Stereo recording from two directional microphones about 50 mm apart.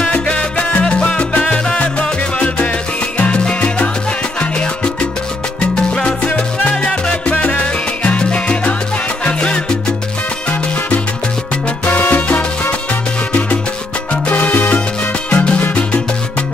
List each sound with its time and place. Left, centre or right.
0.1 s salsa music: left
5.9 s music: left
11.8 s salsa music: left
14.2 s salsa music: left